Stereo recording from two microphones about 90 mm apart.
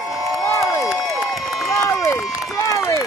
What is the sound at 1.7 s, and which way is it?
Run, 35° left (ahead or behind).